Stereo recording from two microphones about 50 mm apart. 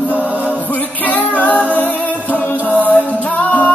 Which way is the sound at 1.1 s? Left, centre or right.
Left.